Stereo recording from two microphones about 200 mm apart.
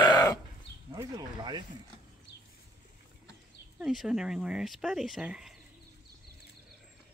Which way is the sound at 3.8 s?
Centre (ahead or behind).